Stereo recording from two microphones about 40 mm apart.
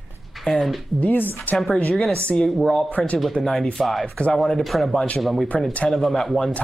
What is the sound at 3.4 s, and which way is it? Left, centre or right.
Speech, left.